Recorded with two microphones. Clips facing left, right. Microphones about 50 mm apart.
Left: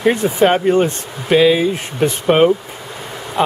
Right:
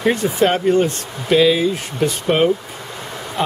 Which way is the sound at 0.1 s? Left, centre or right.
Centre.